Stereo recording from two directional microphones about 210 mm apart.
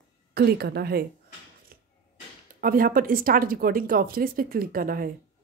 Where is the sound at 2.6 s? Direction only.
45° right (ahead or behind).